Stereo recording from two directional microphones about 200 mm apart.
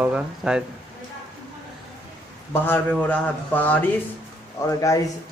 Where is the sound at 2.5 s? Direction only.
10° left (ahead or behind).